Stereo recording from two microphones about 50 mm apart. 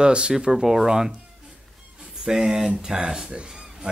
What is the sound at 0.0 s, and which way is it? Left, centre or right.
Speech, centre.